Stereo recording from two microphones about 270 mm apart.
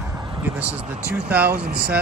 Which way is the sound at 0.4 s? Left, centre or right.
Centre.